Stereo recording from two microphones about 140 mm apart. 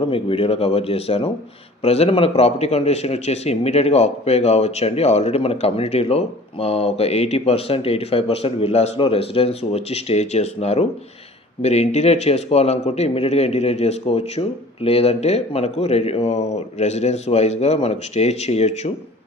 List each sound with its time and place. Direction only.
0.1 s speech: 40° left (ahead or behind)